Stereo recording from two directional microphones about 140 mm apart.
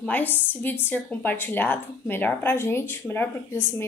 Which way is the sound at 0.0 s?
10° left (ahead or behind).